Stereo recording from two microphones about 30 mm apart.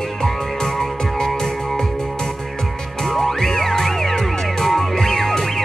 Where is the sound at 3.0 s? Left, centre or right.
Centre.